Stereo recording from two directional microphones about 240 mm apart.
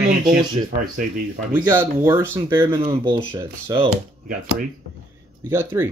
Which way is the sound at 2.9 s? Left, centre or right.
Right.